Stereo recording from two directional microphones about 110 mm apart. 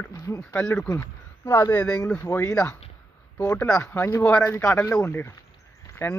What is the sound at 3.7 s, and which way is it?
Speech, 25° left (ahead or behind).